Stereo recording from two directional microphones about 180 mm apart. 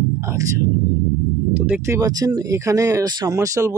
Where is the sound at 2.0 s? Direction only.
20° right (ahead or behind).